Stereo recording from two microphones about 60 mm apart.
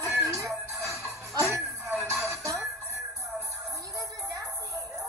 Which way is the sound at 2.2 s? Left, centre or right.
Right.